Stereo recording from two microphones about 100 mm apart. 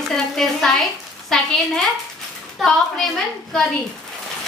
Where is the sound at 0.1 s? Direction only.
5° left (ahead or behind).